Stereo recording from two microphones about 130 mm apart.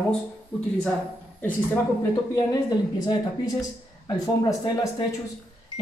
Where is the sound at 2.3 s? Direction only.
30° left (ahead or behind).